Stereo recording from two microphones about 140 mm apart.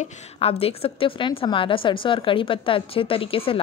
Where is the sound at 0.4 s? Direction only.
45° left (ahead or behind).